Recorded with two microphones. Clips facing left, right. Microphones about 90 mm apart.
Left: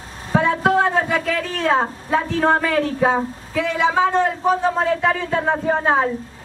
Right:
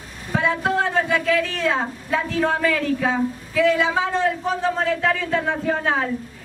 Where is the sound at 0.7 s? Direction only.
40° left (ahead or behind).